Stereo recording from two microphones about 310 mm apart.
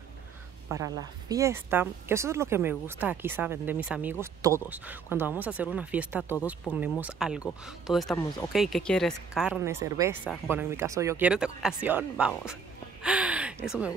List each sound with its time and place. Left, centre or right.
0.7 s speech: centre
13.0 s gasp: centre